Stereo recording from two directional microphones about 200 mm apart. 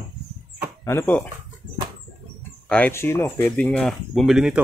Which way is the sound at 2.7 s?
10° left (ahead or behind).